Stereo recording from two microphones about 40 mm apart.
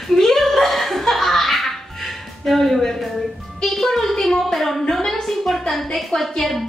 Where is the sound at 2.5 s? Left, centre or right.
Centre.